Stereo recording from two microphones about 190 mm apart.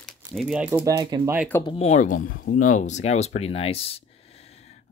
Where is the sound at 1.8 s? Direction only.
40° left (ahead or behind).